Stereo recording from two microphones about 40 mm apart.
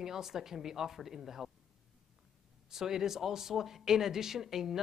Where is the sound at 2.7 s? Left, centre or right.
Centre.